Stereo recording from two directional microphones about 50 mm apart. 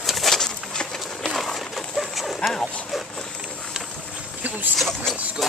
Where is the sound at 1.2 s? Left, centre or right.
Centre.